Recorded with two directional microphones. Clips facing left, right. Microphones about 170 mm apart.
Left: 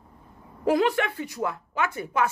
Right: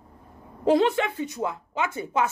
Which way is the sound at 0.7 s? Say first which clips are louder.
Right 2 dB; 25° right (ahead or behind).